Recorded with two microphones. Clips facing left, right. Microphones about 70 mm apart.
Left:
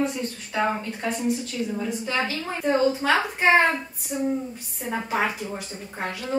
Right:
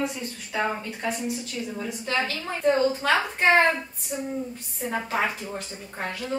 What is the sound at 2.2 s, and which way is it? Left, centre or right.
A woman's voice, centre.